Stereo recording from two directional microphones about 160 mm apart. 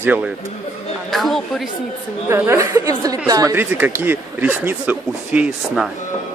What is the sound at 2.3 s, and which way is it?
Speech, 15° right (ahead or behind).